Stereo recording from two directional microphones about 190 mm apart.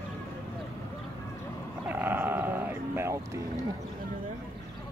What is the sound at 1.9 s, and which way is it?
Sheep, 10° right (ahead or behind).